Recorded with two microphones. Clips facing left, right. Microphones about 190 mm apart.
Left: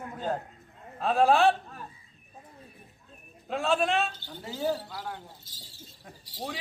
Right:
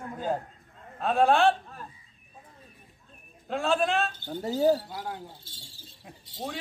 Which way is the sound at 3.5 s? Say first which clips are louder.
Right 1 dB; centre (ahead or behind).